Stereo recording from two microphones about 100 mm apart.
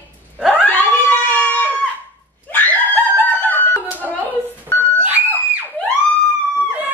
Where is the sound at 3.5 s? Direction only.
15° left (ahead or behind).